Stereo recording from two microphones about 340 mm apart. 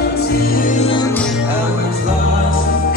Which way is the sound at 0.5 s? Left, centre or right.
Left.